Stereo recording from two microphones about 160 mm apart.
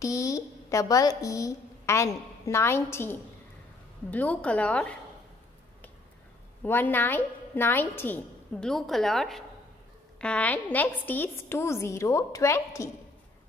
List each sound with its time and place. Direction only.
0.0 s a woman's voice: 20° left (ahead or behind)
6.6 s a woman's voice: 10° left (ahead or behind)